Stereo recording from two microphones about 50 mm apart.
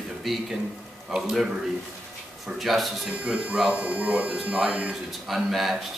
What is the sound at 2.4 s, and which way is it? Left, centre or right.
Speech, centre.